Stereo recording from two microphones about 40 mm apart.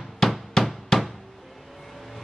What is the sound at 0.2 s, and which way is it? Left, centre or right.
Hammer, centre.